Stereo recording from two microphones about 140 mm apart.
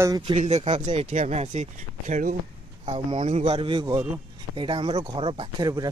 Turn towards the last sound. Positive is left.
turn(degrees=-30)  # may be behind; listen again after turning